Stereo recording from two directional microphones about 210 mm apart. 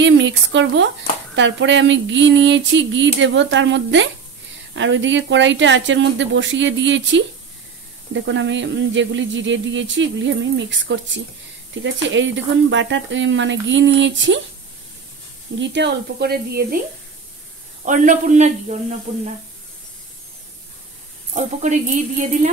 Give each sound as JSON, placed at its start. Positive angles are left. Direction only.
{"t": 0.0, "sound": "speech", "side_deg": -60}
{"t": 15.6, "sound": "speech", "side_deg": -55}
{"t": 17.8, "sound": "speech", "side_deg": -35}
{"t": 21.3, "sound": "speech", "side_deg": -35}